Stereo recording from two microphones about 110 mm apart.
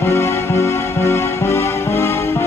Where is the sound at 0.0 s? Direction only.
25° left (ahead or behind).